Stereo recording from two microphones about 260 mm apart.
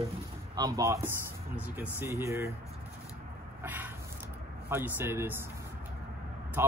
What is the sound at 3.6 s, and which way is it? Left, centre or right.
Vehicle, centre.